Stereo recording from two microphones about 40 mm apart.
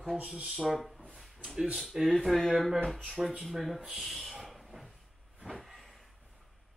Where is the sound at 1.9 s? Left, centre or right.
Centre.